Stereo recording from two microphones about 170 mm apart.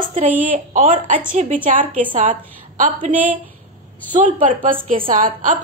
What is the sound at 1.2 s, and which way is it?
Speech, 50° right (ahead or behind).